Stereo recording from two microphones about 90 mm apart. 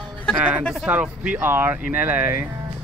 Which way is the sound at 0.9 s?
15° right (ahead or behind).